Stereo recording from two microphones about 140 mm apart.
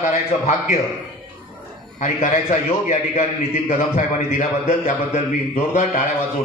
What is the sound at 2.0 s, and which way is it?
A man's voice, 55° left (ahead or behind).